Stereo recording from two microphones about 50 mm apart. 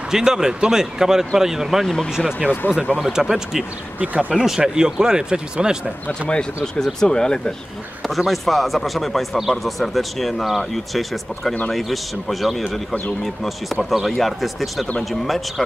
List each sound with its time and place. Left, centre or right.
0.1 s speech: centre
3.0 s speech: centre
4.0 s speech: right
4.3 s a man's voice: centre
4.6 s speech: centre
6.2 s speech: centre
8.1 s a man's voice: centre